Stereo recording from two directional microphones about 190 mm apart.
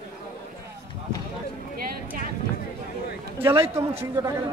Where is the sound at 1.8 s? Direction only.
50° right (ahead or behind).